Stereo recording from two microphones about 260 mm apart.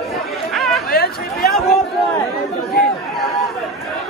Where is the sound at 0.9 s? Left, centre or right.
Left.